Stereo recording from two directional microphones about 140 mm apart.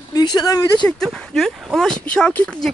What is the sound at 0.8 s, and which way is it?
Speech, 5° left (ahead or behind).